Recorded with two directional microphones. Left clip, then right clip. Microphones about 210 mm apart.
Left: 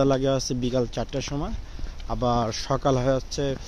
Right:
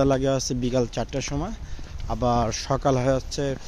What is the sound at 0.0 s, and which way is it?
Speech, 10° right (ahead or behind).